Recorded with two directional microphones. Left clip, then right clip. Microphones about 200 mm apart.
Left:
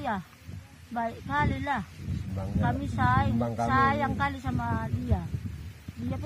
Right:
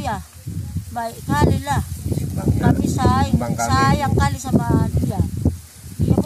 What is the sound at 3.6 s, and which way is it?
Speech, 10° right (ahead or behind).